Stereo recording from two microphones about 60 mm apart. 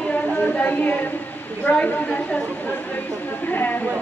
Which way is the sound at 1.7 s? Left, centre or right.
Left.